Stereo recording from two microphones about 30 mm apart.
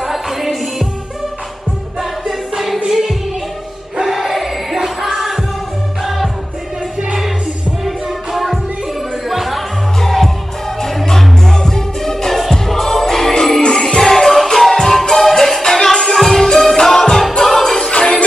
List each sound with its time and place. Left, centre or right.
0.0 s music: centre
2.0 s choir: centre
2.9 s music: centre
4.0 s crowd: centre
6.0 s music: centre
7.8 s music: centre
9.9 s music: centre